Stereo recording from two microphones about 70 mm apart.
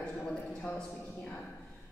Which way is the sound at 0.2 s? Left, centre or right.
Centre.